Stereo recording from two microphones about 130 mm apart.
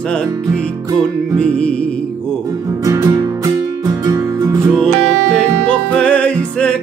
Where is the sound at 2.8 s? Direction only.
25° right (ahead or behind).